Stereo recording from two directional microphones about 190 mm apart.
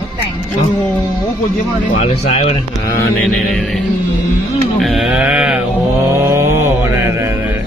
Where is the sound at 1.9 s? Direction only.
35° left (ahead or behind).